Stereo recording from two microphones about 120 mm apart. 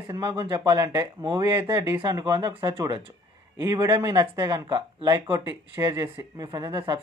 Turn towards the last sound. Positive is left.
turn(degrees=-25)  # may be behind; listen again after turning